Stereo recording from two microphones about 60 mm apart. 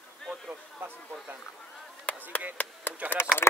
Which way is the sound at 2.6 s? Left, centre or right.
Left.